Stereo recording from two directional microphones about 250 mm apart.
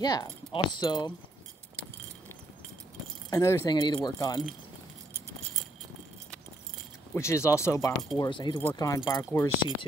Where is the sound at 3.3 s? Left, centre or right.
Centre.